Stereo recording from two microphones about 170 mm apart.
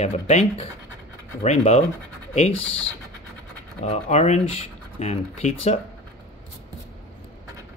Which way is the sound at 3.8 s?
40° left (ahead or behind).